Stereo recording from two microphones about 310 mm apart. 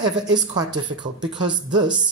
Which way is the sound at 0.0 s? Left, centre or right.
Centre.